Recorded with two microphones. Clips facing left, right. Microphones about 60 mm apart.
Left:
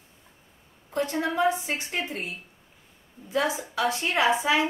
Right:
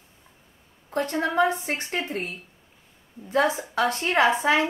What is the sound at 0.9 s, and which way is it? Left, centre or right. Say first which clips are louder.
A woman's voice: right 3 dB; right.